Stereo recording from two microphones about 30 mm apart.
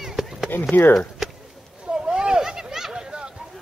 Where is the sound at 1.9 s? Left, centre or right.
Right.